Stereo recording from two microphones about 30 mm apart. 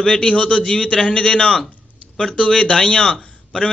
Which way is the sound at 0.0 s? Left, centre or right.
Left.